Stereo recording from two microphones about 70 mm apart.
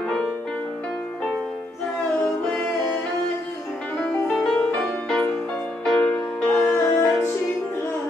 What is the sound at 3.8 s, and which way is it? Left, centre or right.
Music, centre.